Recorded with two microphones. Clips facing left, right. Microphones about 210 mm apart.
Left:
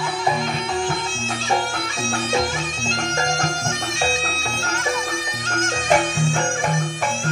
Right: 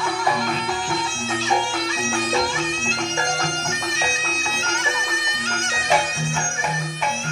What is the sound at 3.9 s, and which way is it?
Bagpipes, 40° left (ahead or behind).